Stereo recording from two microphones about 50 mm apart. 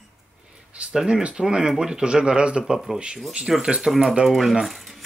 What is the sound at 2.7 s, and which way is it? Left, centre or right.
Speech, centre.